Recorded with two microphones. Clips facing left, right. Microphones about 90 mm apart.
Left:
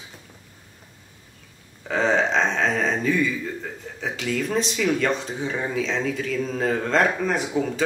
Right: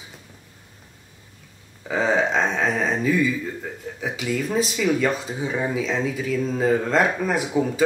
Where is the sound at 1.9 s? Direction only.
5° right (ahead or behind).